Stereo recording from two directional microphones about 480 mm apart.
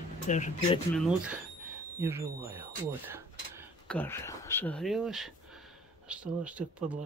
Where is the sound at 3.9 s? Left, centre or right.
Centre.